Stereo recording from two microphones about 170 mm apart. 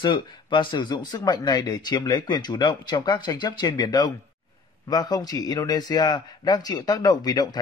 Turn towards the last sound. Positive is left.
turn(degrees=25)  # may be behind; listen again after turning